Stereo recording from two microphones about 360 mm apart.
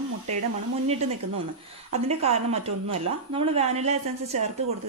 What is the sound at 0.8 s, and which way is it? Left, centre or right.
A woman's voice, centre.